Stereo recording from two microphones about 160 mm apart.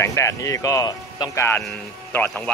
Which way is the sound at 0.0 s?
20° left (ahead or behind).